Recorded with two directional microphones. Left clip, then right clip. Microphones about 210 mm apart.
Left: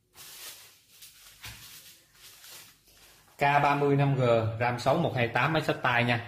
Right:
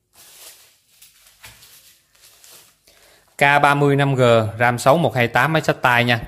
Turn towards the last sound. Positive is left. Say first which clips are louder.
# right 10 dB
turn(degrees=-35)  # may be behind; listen again after turning